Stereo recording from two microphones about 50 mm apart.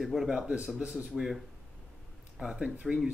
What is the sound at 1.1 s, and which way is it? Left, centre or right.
Speech, centre.